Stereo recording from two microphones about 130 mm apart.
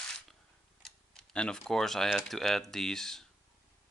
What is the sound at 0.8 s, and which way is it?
Speech, 5° left (ahead or behind).